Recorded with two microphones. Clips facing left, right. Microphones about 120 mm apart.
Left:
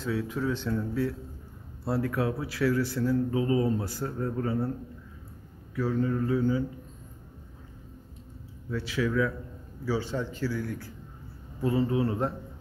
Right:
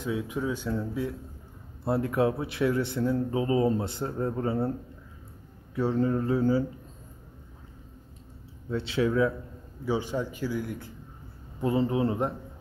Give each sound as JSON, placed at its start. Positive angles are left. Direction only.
{"t": 0.0, "sound": "a man's voice", "side_deg": -15}
{"t": 5.8, "sound": "mantra", "side_deg": -30}
{"t": 8.6, "sound": "a man's voice", "side_deg": -25}
{"t": 9.8, "sound": "a man's voice", "side_deg": -15}